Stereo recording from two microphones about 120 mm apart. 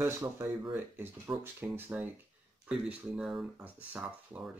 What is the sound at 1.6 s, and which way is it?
Speech, 5° right (ahead or behind).